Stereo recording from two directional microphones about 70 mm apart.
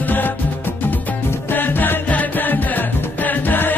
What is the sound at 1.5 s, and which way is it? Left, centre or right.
Music, left.